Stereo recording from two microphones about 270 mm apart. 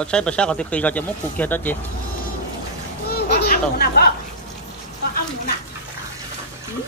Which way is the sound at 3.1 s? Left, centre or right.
Left.